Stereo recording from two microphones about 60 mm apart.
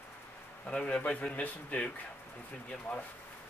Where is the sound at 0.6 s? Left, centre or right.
Left.